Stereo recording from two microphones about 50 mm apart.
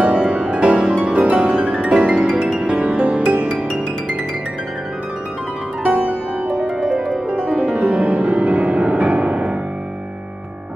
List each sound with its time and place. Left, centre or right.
0.0 s music: right
2.6 s music: right
5.9 s music: right